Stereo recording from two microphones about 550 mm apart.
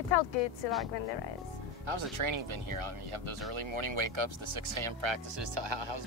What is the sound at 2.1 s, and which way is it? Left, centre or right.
Speech, right.